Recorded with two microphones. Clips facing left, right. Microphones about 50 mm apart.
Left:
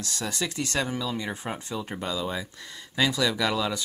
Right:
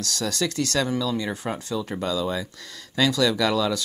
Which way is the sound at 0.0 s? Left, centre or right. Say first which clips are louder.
Right 5 dB; left.